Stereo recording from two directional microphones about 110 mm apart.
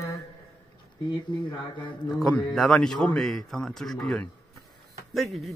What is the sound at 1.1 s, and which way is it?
Mantra, 45° left (ahead or behind).